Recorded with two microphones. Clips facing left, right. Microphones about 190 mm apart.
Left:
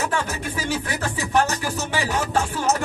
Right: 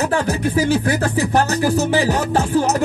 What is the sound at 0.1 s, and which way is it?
Music, 35° right (ahead or behind).